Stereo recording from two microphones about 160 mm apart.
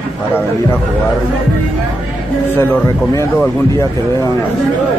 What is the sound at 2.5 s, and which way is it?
Speech, 10° left (ahead or behind).